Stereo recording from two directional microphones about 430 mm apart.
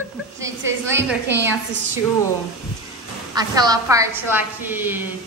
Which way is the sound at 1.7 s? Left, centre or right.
Right.